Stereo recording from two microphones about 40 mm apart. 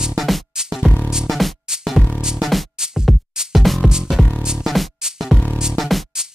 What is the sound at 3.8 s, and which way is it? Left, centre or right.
Music, centre.